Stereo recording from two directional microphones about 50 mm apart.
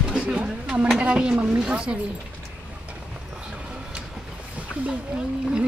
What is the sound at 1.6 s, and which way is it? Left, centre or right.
Speech, right.